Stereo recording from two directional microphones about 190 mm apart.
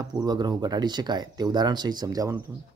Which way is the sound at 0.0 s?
20° right (ahead or behind).